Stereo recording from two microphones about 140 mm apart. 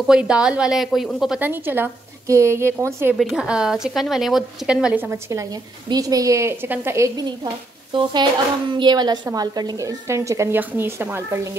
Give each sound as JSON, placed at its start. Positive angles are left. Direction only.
{"t": 0.0, "sound": "speech", "side_deg": -5}
{"t": 1.4, "sound": "a woman's voice", "side_deg": -15}
{"t": 3.2, "sound": "speech", "side_deg": -5}
{"t": 5.1, "sound": "a woman's voice", "side_deg": -25}
{"t": 7.9, "sound": "a woman's voice", "side_deg": -35}